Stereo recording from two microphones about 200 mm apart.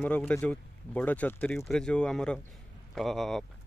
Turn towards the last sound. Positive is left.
turn(degrees=0)  # may be behind; listen again after turning